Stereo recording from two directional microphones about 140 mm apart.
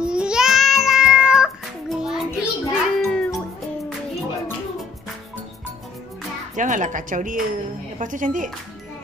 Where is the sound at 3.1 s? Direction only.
5° left (ahead or behind).